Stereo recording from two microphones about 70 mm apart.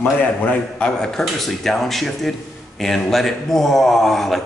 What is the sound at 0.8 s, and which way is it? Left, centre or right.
A man's voice, centre.